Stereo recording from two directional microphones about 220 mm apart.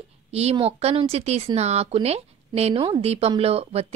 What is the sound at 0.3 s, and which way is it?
Speech, 30° right (ahead or behind).